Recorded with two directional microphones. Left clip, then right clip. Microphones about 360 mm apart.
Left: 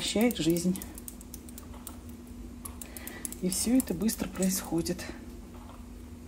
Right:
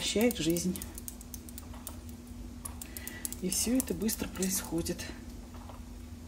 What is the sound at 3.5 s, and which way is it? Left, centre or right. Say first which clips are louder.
Speech: left 3 dB; centre.